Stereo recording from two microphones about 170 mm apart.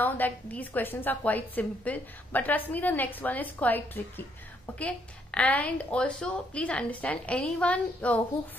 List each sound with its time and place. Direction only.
0.0 s a woman's voice: 10° left (ahead or behind)